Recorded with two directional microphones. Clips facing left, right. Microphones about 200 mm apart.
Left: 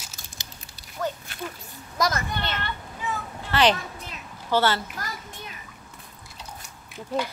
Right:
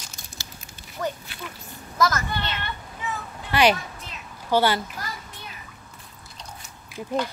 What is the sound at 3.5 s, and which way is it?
Speech, 10° right (ahead or behind).